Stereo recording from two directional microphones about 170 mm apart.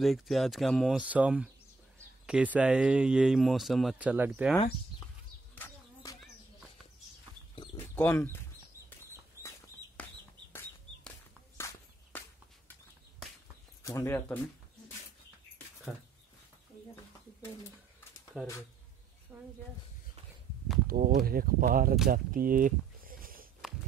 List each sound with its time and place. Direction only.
0.0 s speech: centre (ahead or behind)
5.5 s a sound: 10° left (ahead or behind)
7.7 s chicken: 10° left (ahead or behind)
11.1 s walk: 10° left (ahead or behind)
13.8 s speech: 15° left (ahead or behind)
18.3 s speech: 5° right (ahead or behind)
19.3 s a sound: 15° right (ahead or behind)
20.8 s speech: 60° right (ahead or behind)
22.1 s a sound: 55° right (ahead or behind)